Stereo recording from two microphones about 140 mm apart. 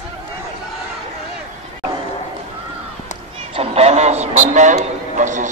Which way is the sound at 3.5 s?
45° right (ahead or behind).